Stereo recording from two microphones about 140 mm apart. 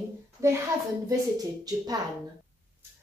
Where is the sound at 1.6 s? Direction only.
30° right (ahead or behind).